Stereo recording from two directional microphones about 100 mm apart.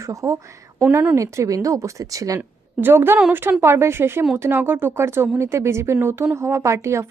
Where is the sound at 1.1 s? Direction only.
30° right (ahead or behind).